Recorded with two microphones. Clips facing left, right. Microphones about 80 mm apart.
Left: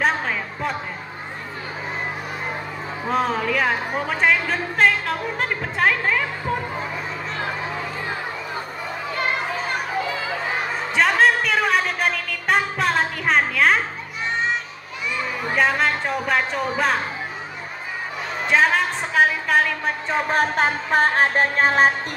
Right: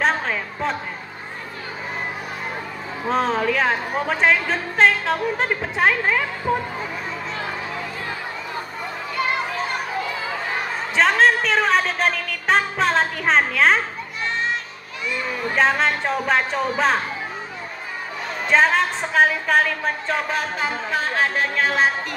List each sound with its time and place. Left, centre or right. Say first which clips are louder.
0.0 s a sound: right 1 dB; centre
3.1 s speech: right 1 dB; centre
11.0 s music: right 1 dB; centre
15.5 s speech: right 1 dB; centre
18.5 s speech: right 1 dB; centre
20.3 s music: left 4 dB; left